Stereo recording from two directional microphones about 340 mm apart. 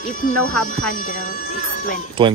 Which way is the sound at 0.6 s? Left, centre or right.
Left.